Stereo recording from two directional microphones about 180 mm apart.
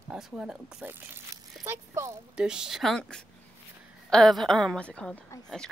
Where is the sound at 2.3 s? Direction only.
5° right (ahead or behind).